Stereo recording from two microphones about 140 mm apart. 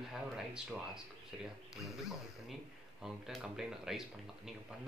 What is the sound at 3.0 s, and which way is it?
Speech, 5° right (ahead or behind).